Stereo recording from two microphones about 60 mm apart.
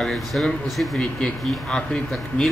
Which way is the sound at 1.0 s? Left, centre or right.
Centre.